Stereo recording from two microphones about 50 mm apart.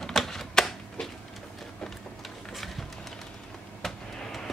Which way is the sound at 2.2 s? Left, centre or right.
Centre.